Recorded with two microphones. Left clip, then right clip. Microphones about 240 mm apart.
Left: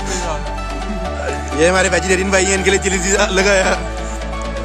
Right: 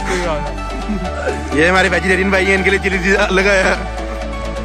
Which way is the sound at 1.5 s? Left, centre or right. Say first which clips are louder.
Right 1 dB; centre.